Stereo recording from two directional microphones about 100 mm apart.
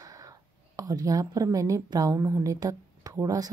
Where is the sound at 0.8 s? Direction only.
35° right (ahead or behind).